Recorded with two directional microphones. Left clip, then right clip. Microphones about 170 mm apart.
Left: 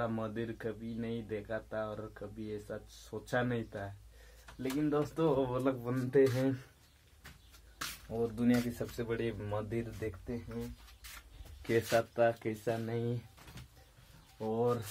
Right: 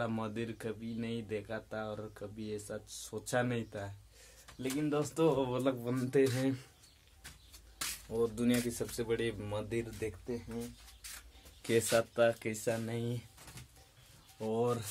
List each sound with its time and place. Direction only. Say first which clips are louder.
0.0 s speech: left 1 dB; 10° right (ahead or behind)
8.4 s speech: left 1 dB; 15° right (ahead or behind)
11.6 s speech: even; 20° right (ahead or behind)
14.4 s speech: left 1 dB; 5° right (ahead or behind)